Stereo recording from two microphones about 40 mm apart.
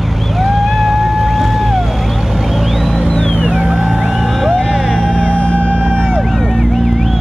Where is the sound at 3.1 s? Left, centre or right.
Left.